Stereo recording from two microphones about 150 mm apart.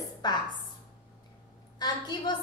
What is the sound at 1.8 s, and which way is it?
Speech, 25° left (ahead or behind).